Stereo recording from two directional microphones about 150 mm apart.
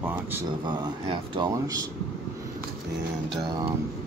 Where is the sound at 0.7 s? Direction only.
30° right (ahead or behind).